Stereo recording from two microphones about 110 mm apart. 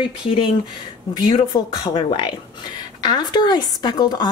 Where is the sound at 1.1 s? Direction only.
40° left (ahead or behind).